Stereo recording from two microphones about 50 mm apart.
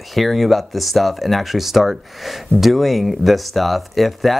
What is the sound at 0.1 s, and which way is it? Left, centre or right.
Speech, centre.